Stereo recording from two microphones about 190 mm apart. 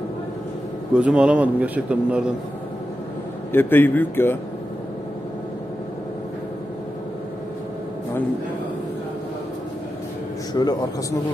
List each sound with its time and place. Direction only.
0.9 s a man's voice: 5° right (ahead or behind)
3.5 s speech: 10° left (ahead or behind)
10.5 s speech: 20° left (ahead or behind)